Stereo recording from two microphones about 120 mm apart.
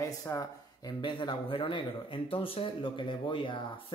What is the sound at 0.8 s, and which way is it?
Speech, 40° left (ahead or behind).